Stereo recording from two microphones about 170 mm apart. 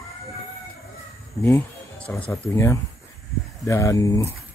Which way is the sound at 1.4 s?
15° left (ahead or behind).